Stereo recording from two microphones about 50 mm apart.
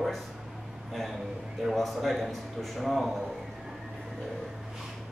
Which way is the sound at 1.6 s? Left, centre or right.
Centre.